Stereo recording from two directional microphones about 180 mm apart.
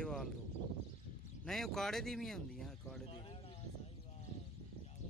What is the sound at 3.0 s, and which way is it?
Speech, 30° left (ahead or behind).